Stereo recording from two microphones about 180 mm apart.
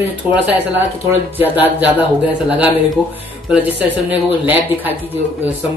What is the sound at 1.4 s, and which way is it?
Speech, 10° right (ahead or behind).